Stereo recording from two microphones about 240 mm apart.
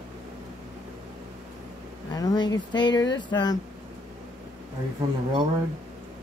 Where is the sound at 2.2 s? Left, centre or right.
Centre.